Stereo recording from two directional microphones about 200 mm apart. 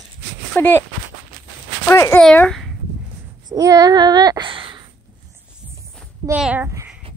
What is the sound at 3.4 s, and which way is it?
Speech, 20° right (ahead or behind).